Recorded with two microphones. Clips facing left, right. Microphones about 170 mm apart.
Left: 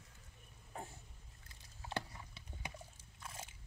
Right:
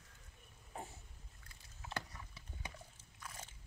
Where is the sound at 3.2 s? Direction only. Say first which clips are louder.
Left 1 dB; 25° left (ahead or behind).